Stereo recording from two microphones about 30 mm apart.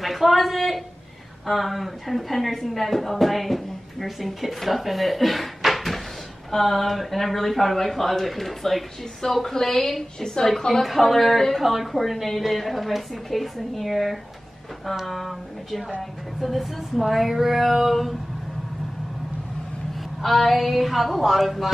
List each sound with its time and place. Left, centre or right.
0.0 s a woman's voice: centre
10.8 s a woman's voice: centre
20.2 s a woman's voice: centre